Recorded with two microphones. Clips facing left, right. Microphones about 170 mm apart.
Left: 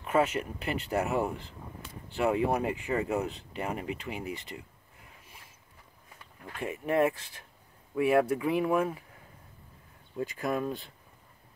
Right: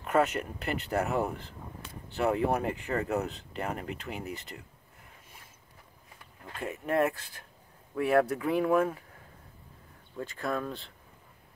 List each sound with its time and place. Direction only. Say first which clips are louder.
0.0 s speech: even; centre (ahead or behind)
2.4 s speech: even; 5° left (ahead or behind)
6.6 s speech: left 1 dB; 5° left (ahead or behind)
10.1 s speech: left 2 dB; 15° left (ahead or behind)